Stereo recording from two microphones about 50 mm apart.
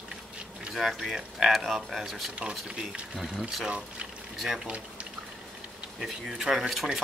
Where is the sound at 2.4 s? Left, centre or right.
Right.